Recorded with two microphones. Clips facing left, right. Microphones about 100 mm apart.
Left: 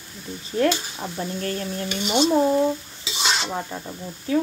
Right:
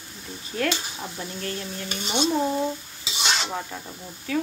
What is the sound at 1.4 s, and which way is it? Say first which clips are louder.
Speech: left 3 dB; 40° left (ahead or behind).